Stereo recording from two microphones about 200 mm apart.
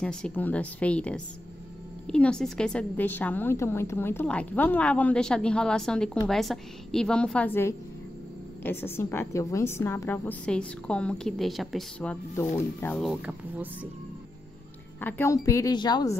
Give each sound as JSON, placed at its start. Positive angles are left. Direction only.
{"t": 0.0, "sound": "a woman's voice", "side_deg": 5}
{"t": 15.0, "sound": "a woman's voice", "side_deg": 10}